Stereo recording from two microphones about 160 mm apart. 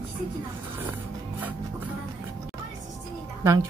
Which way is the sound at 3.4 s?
20° right (ahead or behind).